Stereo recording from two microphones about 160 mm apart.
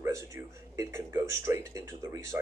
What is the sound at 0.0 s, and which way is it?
Speech, 20° right (ahead or behind).